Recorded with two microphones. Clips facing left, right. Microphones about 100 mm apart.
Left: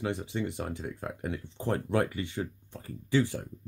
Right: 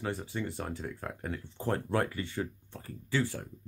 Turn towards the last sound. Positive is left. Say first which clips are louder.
# left 4 dB
turn(degrees=20)  # may be behind; listen again after turning